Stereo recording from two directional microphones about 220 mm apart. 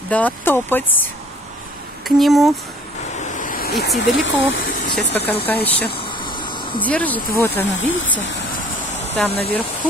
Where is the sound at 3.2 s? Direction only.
35° left (ahead or behind); by 4.6 s 55° left (ahead or behind).